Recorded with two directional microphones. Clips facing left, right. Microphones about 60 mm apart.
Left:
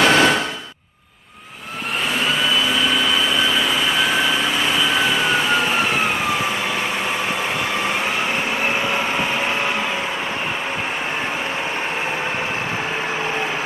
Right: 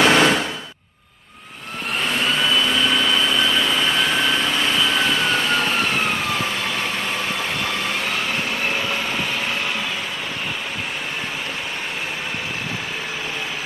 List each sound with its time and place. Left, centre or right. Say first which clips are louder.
0.0 s a sound: even; centre
2.1 s vehicle: even; centre
8.6 s vehicle: left 4 dB; centre